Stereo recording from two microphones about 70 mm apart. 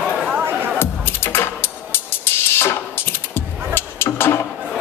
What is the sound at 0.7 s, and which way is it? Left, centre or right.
Music, left.